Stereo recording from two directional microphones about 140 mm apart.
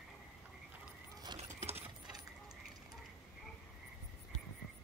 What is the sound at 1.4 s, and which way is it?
Mechanisms, 50° right (ahead or behind).